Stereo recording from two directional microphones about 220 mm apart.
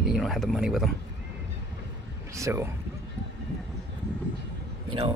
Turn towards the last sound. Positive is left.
turn(degrees=-20)  # may be behind; listen again after turning